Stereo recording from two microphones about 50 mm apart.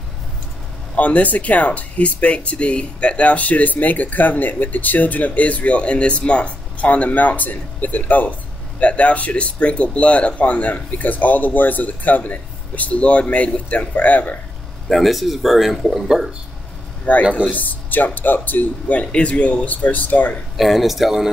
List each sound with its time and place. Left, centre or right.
0.9 s speech: left
14.9 s speech: centre
17.1 s speech: left
20.5 s speech: centre